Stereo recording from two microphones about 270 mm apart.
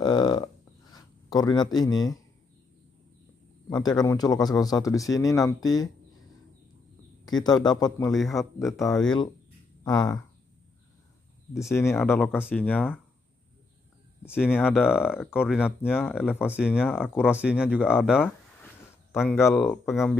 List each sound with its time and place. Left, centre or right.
0.0 s a sound: centre
0.9 s speech: centre
3.8 s a man's voice: centre
7.2 s a man's voice: centre
8.1 s speech: centre
9.8 s a man's voice: centre
11.8 s a man's voice: centre
14.2 s speech: centre
16.2 s a man's voice: centre
16.4 s speech: centre
19.1 s speech: centre